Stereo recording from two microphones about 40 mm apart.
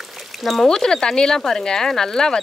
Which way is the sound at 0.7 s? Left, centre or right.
Centre.